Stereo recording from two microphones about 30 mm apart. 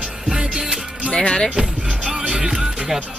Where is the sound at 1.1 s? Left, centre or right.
Left.